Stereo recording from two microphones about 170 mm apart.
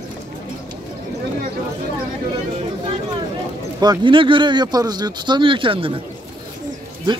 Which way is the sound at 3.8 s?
25° right (ahead or behind).